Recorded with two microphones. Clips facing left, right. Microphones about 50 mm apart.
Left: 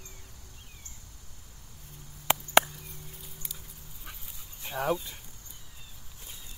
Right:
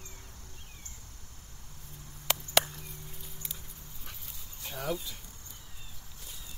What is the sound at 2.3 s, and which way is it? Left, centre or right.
Chop, left.